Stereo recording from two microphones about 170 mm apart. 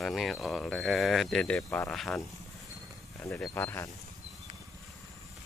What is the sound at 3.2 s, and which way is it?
Speech, 10° left (ahead or behind).